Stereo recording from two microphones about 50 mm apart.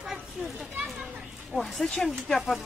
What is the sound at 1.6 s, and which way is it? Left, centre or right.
Speech, centre.